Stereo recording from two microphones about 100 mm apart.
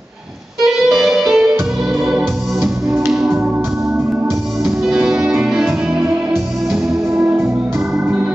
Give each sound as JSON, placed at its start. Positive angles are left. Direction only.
{"t": 0.7, "sound": "music", "side_deg": -5}
{"t": 4.8, "sound": "music", "side_deg": -5}
{"t": 7.2, "sound": "music", "side_deg": -20}